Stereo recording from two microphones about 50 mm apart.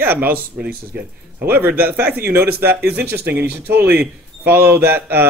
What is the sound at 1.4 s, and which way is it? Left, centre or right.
Speech, right.